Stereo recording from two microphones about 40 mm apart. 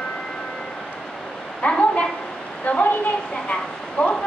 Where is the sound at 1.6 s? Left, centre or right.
Left.